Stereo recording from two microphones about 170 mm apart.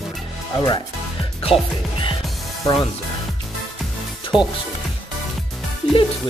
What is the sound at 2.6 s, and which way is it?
Speech, 25° left (ahead or behind).